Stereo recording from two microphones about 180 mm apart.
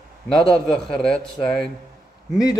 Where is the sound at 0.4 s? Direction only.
5° left (ahead or behind).